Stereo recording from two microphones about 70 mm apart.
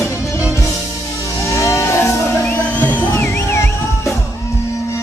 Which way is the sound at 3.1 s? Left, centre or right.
Left.